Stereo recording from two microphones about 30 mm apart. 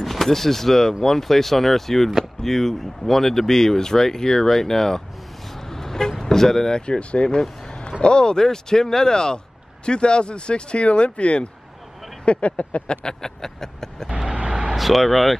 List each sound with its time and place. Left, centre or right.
0.0 s speech: centre
5.5 s vehicle: centre
7.0 s speech: left
7.6 s a sound: left
8.0 s speech: left
12.8 s speech: left
13.2 s speech: centre
14.5 s vehicle: right
14.8 s speech: centre